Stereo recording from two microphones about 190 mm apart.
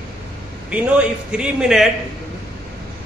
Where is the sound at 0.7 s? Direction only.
5° right (ahead or behind).